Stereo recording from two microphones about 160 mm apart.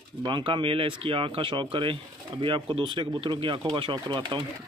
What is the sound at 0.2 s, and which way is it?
Speech, 30° right (ahead or behind).